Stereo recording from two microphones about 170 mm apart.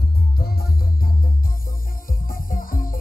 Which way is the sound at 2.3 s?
55° left (ahead or behind).